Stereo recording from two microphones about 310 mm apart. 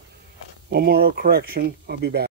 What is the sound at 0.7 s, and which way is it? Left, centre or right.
Speech, right.